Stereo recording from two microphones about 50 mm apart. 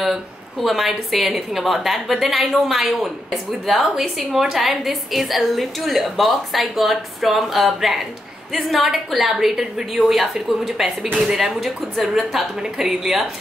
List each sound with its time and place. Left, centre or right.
0.0 s a woman's voice: centre